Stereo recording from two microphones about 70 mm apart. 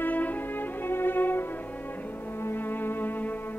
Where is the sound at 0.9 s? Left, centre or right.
Left.